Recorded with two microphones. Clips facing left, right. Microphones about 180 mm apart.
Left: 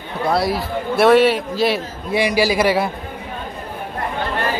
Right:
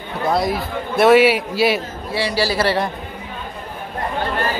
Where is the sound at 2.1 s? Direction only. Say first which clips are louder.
Left 3 dB; 15° left (ahead or behind).